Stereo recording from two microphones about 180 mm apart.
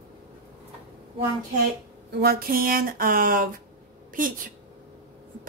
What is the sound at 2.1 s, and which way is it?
A woman's voice, 60° right (ahead or behind).